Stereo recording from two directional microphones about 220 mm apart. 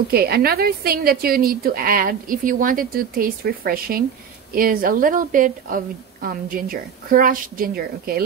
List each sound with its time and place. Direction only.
0.1 s a woman's voice: 45° right (ahead or behind)